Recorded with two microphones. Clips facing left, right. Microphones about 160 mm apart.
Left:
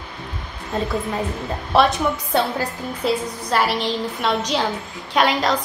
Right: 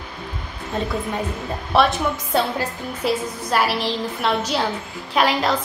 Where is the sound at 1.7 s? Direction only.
Centre (ahead or behind).